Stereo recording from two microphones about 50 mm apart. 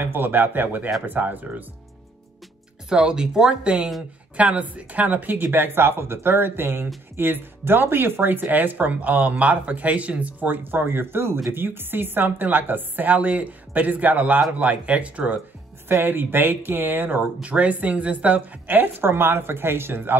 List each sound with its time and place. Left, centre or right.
0.0 s speech: right
2.9 s speech: centre
15.9 s speech: right
17.4 s speech: right